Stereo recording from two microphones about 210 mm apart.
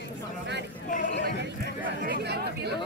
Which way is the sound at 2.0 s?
50° right (ahead or behind).